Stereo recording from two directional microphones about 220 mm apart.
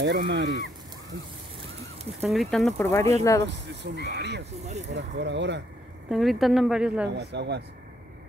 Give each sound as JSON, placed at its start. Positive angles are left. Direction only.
{"t": 0.0, "sound": "speech", "side_deg": -50}
{"t": 2.2, "sound": "a woman's voice", "side_deg": 0}
{"t": 2.8, "sound": "speech", "side_deg": 10}
{"t": 3.4, "sound": "speech", "side_deg": -50}
{"t": 4.6, "sound": "speech", "side_deg": -30}
{"t": 4.9, "sound": "speech", "side_deg": -55}
{"t": 6.0, "sound": "a woman's voice", "side_deg": 0}
{"t": 7.1, "sound": "speech", "side_deg": -50}